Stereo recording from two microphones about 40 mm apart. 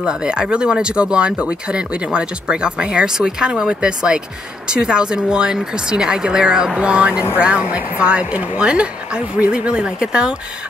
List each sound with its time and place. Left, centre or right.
0.0 s speech: right
6.8 s speech: right